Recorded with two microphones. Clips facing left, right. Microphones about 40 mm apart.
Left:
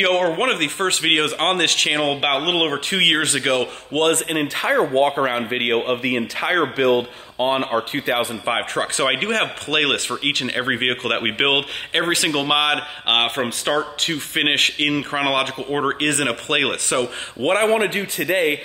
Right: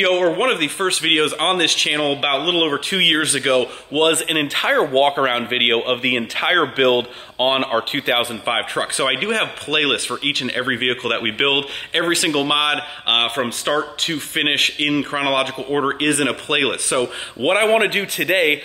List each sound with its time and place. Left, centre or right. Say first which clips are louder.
0.0 s speech: right 2 dB; centre
4.3 s speech: right 2 dB; right
8.5 s speech: right 1 dB; centre
17.4 s a man's voice: right 1 dB; centre
17.6 s speech: right 2 dB; right